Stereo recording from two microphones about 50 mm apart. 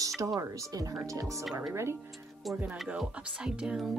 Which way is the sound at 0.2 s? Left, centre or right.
Right.